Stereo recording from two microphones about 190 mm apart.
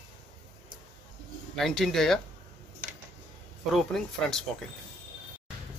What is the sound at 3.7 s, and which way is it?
Speech, centre (ahead or behind).